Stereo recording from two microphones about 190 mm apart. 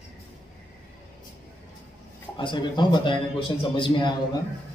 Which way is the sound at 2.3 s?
25° left (ahead or behind).